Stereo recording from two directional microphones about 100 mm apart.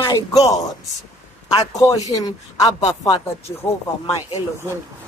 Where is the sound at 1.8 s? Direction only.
35° left (ahead or behind).